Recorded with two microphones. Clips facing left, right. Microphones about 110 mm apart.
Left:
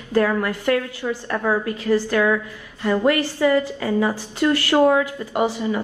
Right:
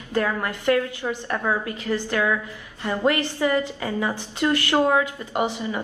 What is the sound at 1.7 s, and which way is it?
A woman's voice, 20° right (ahead or behind).